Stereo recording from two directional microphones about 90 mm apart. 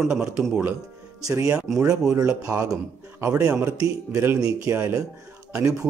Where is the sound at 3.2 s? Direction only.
35° right (ahead or behind).